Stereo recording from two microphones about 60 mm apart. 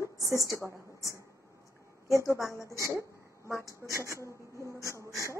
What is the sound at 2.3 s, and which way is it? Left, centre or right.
Speech, left.